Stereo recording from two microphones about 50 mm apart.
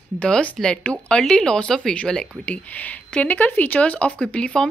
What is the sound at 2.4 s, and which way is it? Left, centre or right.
A woman's voice, left.